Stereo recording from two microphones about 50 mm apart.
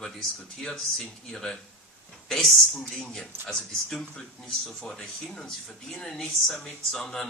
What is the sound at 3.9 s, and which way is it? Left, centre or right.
Speech, centre.